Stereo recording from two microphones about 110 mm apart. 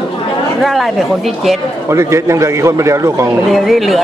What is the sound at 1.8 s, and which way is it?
A man's voice, 25° right (ahead or behind).